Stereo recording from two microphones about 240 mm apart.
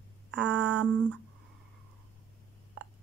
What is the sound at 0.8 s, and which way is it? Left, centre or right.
Speech, centre.